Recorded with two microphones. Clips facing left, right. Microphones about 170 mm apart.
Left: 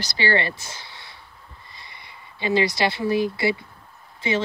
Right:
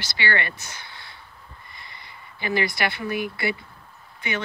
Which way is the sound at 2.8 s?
25° left (ahead or behind).